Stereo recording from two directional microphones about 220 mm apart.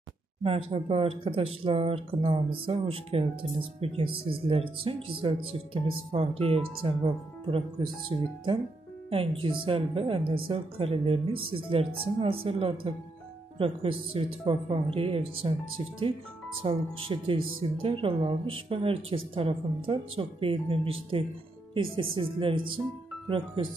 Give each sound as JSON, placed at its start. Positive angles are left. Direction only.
{"t": 0.4, "sound": "speech", "side_deg": -25}
{"t": 8.1, "sound": "speech", "side_deg": -20}
{"t": 16.6, "sound": "speech", "side_deg": -25}